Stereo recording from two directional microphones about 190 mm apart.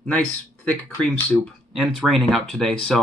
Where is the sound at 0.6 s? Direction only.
5° left (ahead or behind).